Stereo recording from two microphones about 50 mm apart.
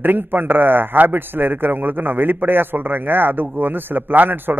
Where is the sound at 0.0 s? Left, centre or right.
Right.